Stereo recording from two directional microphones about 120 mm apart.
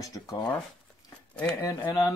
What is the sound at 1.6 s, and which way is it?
Speech, 35° left (ahead or behind).